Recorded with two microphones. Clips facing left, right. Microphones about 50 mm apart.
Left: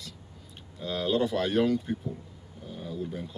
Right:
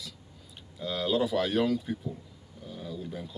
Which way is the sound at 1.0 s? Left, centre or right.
Centre.